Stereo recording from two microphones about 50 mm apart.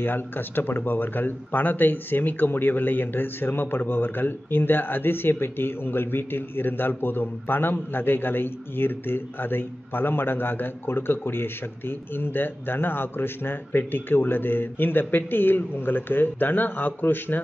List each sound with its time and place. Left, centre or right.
0.0 s speech: left